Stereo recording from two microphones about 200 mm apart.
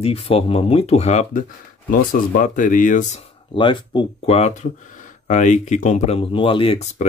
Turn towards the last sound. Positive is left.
turn(degrees=30)  # may be behind; listen again after turning